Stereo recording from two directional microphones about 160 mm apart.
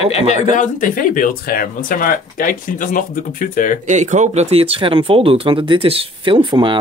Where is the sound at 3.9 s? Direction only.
50° right (ahead or behind).